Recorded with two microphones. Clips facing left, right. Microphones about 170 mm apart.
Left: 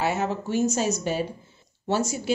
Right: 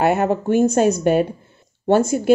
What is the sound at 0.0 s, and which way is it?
Speech, 55° right (ahead or behind).